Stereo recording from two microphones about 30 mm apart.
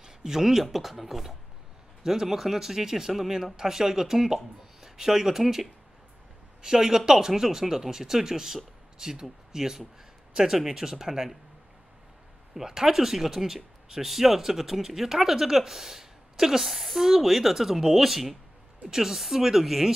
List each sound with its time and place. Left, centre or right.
0.0 s speech: centre
6.6 s speech: centre
12.5 s speech: centre
16.6 s speech: centre
18.9 s speech: centre